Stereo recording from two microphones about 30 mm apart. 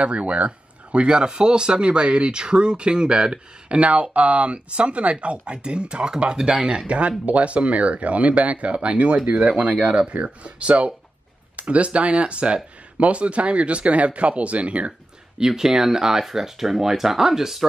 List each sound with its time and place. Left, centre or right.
0.0 s speech: right
6.9 s speech: right
10.4 s speech: right
15.3 s speech: centre